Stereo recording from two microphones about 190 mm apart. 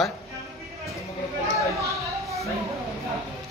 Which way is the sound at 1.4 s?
15° right (ahead or behind).